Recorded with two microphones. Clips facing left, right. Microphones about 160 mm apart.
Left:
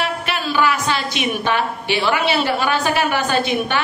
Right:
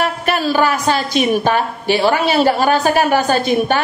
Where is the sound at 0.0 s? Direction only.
45° right (ahead or behind).